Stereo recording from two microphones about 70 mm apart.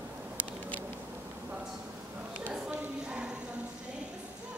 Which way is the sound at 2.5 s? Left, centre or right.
Centre.